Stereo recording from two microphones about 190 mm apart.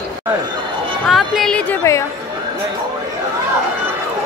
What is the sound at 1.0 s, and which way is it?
Speech, centre (ahead or behind).